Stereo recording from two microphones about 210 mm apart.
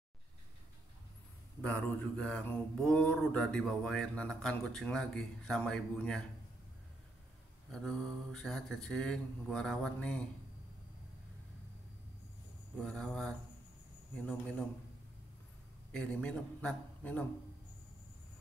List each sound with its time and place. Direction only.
1.6 s mantra: 5° left (ahead or behind)
7.7 s mantra: 5° left (ahead or behind)
12.7 s mantra: 5° left (ahead or behind)
15.9 s mantra: 5° left (ahead or behind)